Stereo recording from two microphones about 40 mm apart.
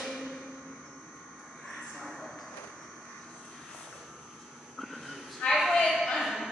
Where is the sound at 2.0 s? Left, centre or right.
Centre.